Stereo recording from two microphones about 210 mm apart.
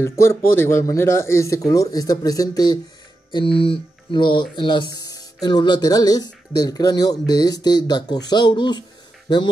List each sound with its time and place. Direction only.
0.0 s speech: 10° left (ahead or behind)